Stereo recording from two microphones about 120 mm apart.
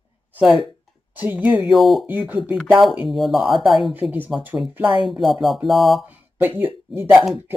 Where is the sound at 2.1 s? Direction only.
10° right (ahead or behind).